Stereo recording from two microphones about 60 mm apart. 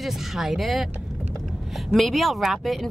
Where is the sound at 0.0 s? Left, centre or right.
Centre.